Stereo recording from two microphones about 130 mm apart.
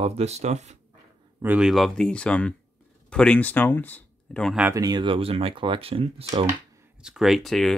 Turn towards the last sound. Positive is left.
turn(degrees=0)  # may be behind; listen again after turning